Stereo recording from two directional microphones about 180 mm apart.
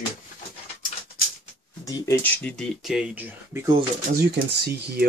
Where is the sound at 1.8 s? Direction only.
20° left (ahead or behind).